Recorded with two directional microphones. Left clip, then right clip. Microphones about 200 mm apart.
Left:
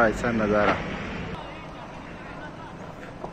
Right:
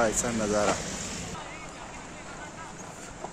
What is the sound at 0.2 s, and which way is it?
Speech, 10° right (ahead or behind).